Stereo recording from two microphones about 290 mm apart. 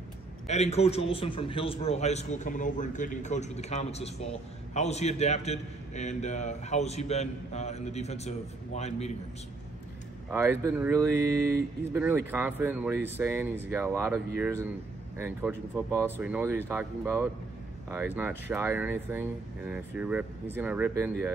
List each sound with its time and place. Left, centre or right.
0.5 s a man's voice: left
10.3 s speech: centre